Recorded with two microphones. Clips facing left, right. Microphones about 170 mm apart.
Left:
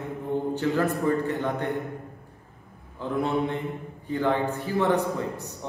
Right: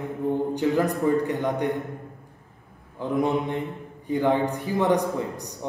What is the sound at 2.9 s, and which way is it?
A man's voice, 15° right (ahead or behind).